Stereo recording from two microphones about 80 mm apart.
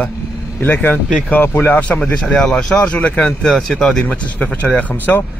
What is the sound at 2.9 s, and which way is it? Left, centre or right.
Speech, centre.